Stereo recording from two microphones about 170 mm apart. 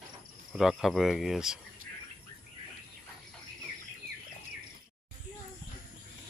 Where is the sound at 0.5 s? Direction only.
Centre (ahead or behind).